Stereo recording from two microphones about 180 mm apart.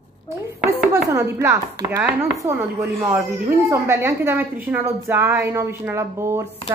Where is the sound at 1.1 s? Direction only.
15° right (ahead or behind).